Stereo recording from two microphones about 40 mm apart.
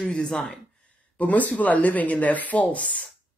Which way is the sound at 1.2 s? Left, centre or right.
Left.